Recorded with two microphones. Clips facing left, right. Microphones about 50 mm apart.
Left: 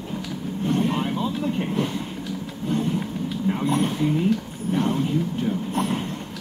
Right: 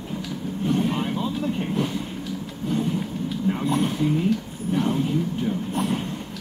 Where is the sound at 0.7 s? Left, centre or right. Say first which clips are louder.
Left 1 dB; centre.